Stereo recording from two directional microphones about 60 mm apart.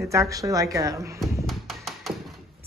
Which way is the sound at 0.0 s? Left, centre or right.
Right.